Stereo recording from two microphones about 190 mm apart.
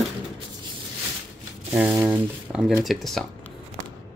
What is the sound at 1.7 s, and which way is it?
Speech, 5° right (ahead or behind).